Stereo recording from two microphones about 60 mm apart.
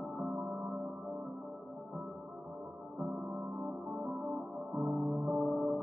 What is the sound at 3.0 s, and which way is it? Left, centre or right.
Music, right.